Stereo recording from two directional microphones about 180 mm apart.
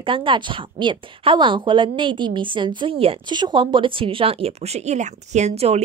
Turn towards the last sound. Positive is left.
turn(degrees=-35)  # may be behind; listen again after turning